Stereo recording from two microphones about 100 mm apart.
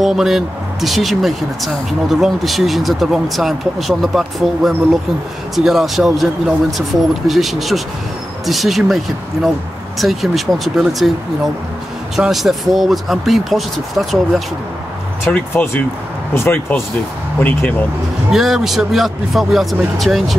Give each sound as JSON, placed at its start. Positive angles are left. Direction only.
{"t": 0.0, "sound": "speech", "side_deg": 0}
{"t": 15.2, "sound": "speech", "side_deg": 25}
{"t": 18.3, "sound": "speech", "side_deg": -5}